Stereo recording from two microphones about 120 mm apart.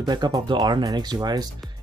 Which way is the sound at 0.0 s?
35° right (ahead or behind).